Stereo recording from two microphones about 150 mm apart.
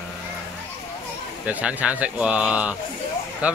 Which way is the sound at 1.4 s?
10° right (ahead or behind).